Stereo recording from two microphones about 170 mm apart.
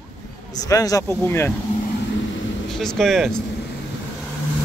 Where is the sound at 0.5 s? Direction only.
20° left (ahead or behind).